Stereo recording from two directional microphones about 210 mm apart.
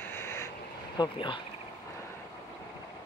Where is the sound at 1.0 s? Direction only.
20° left (ahead or behind).